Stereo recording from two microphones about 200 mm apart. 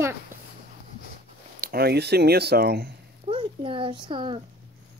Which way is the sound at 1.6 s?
50° right (ahead or behind).